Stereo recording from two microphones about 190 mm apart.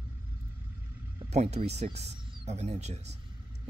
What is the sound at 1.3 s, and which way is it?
Speech, 35° right (ahead or behind).